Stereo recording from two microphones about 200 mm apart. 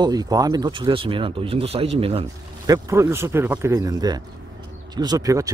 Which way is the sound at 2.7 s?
15° right (ahead or behind).